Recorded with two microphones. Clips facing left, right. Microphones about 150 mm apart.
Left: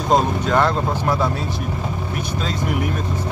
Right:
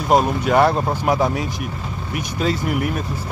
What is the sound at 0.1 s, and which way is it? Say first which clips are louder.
Speech: right 2 dB; 10° right (ahead or behind).